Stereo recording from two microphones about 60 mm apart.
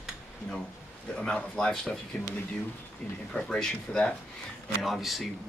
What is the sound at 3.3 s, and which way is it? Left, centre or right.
Speech, centre.